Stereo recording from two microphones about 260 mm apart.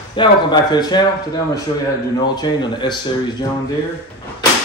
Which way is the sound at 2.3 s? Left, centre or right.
Centre.